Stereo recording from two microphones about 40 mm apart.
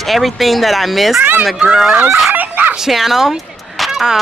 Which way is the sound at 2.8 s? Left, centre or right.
Centre.